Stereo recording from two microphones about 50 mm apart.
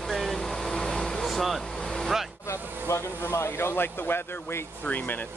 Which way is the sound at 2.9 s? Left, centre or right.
Left.